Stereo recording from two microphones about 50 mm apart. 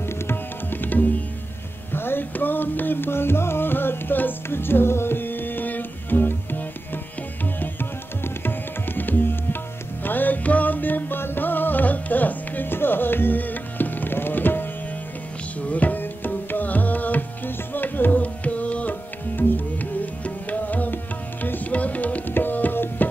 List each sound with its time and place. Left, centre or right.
0.3 s tabla: left
1.9 s music: left
8.2 s tabla: left
10.0 s music: left
15.7 s music: left
20.2 s music: left
22.3 s tabla: left